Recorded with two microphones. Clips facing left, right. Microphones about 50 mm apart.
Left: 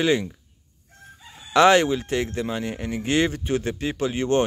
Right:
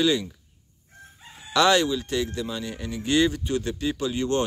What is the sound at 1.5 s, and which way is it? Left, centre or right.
Speech, left.